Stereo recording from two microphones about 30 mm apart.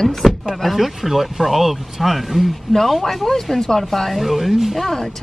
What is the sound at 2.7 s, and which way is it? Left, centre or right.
A woman's voice, centre.